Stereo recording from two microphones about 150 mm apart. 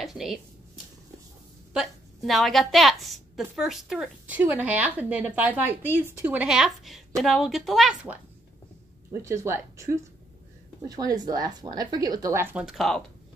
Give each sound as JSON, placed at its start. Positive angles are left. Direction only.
{"t": 0.0, "sound": "a sound", "side_deg": 0}
{"t": 1.7, "sound": "a woman's voice", "side_deg": 0}
{"t": 9.1, "sound": "speech", "side_deg": -20}
{"t": 12.6, "sound": "a woman's voice", "side_deg": 0}